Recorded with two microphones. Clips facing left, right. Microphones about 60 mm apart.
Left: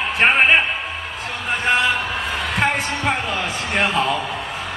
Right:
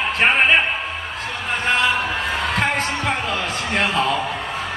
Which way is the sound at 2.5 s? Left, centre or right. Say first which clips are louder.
Left 3 dB; centre.